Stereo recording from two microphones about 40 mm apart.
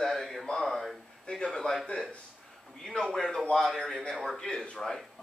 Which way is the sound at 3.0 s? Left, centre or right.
Centre.